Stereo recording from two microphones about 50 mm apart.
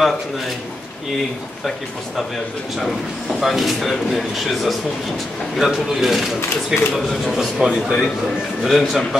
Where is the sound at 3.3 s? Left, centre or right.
Centre.